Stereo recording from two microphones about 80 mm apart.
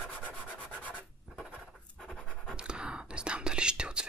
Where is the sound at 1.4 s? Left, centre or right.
Centre.